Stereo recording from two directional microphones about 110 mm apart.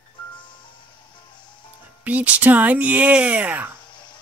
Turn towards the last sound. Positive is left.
turn(degrees=-15)  # may be behind; listen again after turning